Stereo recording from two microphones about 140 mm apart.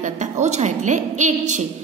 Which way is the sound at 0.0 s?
55° right (ahead or behind).